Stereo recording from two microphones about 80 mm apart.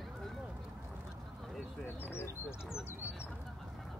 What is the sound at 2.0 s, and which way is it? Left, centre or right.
Bird, left.